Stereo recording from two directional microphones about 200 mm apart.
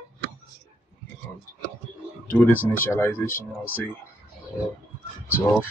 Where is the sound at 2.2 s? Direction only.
10° left (ahead or behind).